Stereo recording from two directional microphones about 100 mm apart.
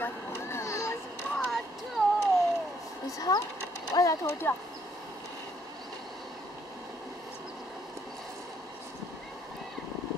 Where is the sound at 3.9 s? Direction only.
35° left (ahead or behind).